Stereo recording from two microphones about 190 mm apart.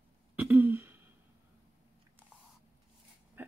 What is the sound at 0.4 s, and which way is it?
Throat clearing, 10° right (ahead or behind).